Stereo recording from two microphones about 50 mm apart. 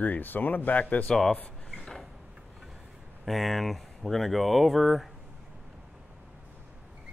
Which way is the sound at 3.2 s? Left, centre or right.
Centre.